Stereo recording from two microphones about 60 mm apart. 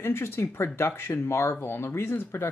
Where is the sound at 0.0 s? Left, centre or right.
Left.